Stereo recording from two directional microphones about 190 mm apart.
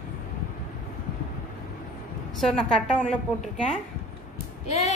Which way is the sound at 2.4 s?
5° left (ahead or behind).